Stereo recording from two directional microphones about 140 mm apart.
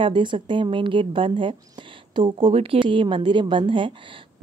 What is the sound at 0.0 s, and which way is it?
Speech, 35° right (ahead or behind).